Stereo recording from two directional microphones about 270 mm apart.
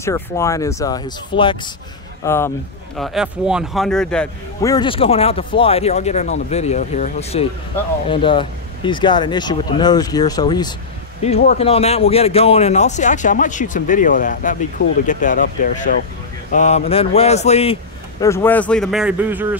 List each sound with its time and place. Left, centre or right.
0.0 s speech: centre
3.0 s a man's voice: centre; by 17.7 s left
18.2 s speech: centre